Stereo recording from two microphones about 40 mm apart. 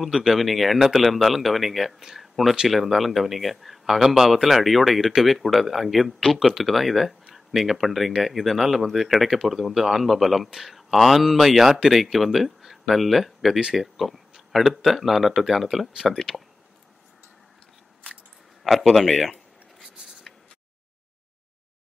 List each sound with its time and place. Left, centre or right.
0.0 s speech: centre
15.9 s speech: centre
18.6 s speech: centre